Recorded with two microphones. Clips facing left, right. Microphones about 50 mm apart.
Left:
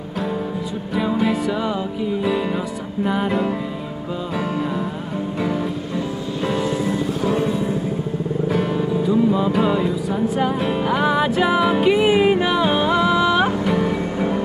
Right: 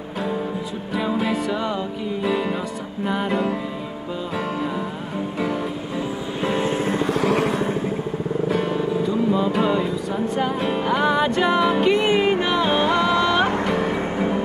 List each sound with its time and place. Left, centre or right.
0.9 s music: centre
6.5 s music: right
7.1 s vehicle: right
8.5 s speech: centre
14.1 s music: centre